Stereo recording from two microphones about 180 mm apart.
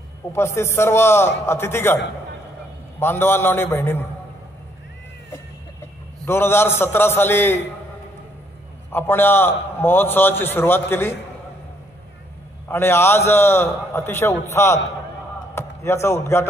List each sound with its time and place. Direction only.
0.3 s a man's voice: 15° left (ahead or behind)
3.0 s a man's voice: 15° left (ahead or behind)
6.2 s a man's voice: 15° left (ahead or behind)
8.9 s a man's voice: 10° left (ahead or behind)
12.6 s a man's voice: 15° left (ahead or behind)